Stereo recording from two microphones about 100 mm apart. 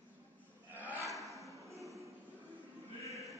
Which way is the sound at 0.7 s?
20° right (ahead or behind).